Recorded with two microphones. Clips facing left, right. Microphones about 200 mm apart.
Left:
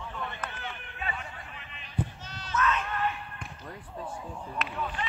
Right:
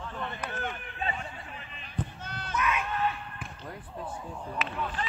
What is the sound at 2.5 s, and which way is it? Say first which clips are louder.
Cat: left 2 dB; 10° right (ahead or behind).